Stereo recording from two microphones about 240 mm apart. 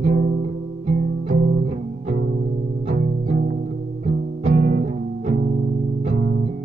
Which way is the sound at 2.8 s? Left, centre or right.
Right.